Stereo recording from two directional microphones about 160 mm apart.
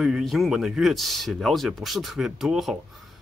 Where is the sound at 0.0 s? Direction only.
Centre (ahead or behind).